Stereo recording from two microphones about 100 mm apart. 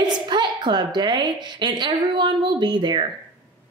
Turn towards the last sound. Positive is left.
turn(degrees=-50)  # may be behind; listen again after turning